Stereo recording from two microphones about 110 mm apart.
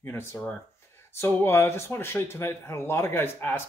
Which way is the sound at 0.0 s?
20° left (ahead or behind).